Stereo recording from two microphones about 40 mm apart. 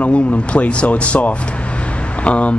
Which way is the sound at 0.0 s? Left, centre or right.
Left.